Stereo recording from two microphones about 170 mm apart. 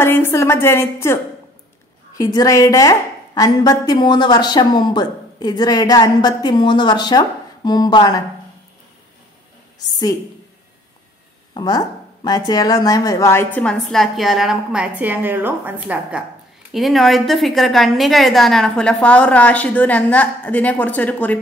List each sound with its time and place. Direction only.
0.0 s a woman's voice: 15° left (ahead or behind)
9.8 s a woman's voice: 20° left (ahead or behind)
11.5 s a woman's voice: 25° left (ahead or behind); by 21.4 s 10° left (ahead or behind)